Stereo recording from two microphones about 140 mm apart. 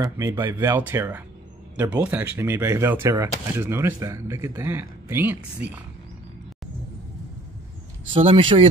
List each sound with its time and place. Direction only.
0.0 s speech: 25° right (ahead or behind)
8.1 s speech: 40° right (ahead or behind)